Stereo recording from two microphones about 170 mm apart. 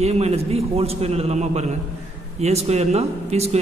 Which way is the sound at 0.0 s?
40° right (ahead or behind).